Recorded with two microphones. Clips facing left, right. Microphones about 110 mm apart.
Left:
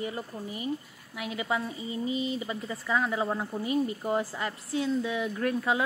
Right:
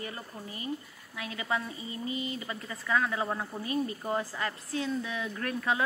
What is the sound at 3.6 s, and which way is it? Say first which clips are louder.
Speech: left 5 dB; 20° left (ahead or behind).